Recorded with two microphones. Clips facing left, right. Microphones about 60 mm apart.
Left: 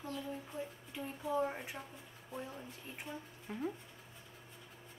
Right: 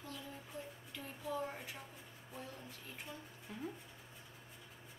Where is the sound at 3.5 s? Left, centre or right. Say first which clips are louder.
Left 6 dB; left.